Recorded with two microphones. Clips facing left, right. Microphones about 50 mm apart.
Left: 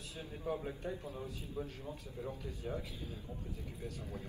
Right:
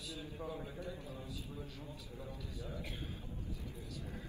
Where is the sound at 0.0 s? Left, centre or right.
Left.